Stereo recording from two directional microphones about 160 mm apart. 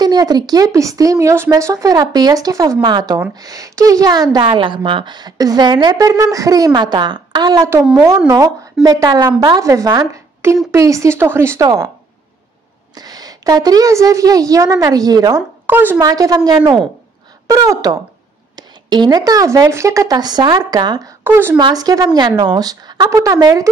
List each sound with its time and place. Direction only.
0.0 s a woman's voice: 25° right (ahead or behind)
12.9 s a woman's voice: 25° right (ahead or behind)
16.0 s a woman's voice: 20° right (ahead or behind)
21.2 s speech: 15° right (ahead or behind)
21.5 s a woman's voice: 25° right (ahead or behind)